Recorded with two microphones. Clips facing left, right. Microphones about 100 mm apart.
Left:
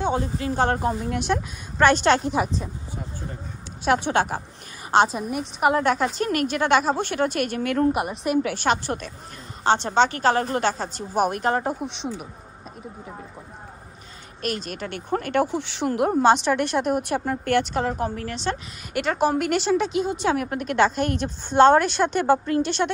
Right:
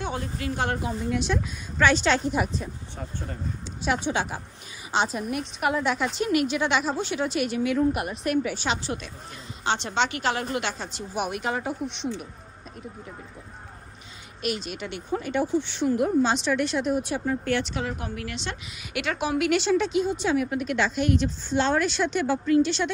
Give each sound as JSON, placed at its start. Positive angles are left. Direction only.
{"t": 0.0, "sound": "a woman's voice", "side_deg": 25}
{"t": 0.7, "sound": "speech", "side_deg": 50}
{"t": 3.8, "sound": "a woman's voice", "side_deg": 60}
{"t": 5.9, "sound": "a woman's voice", "side_deg": 45}
{"t": 8.6, "sound": "a woman's voice", "side_deg": 50}
{"t": 9.6, "sound": "a woman's voice", "side_deg": 40}
{"t": 14.4, "sound": "speech", "side_deg": 45}
{"t": 20.1, "sound": "speech", "side_deg": 70}